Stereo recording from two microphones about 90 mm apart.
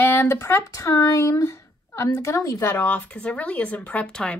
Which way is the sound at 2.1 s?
35° left (ahead or behind).